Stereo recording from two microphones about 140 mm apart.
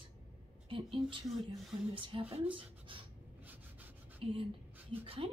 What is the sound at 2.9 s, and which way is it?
Writing, 40° right (ahead or behind).